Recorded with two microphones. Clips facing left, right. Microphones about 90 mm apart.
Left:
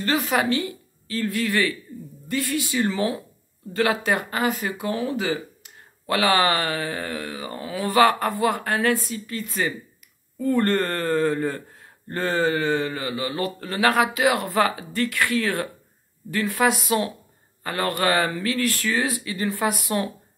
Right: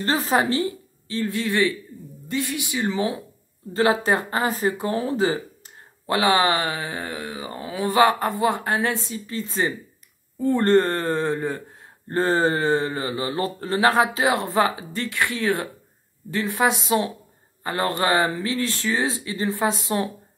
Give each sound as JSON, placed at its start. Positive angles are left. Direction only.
{"t": 0.0, "sound": "speech", "side_deg": -35}
{"t": 3.7, "sound": "speech", "side_deg": -30}
{"t": 6.0, "sound": "speech", "side_deg": -20}
{"t": 12.1, "sound": "speech", "side_deg": -35}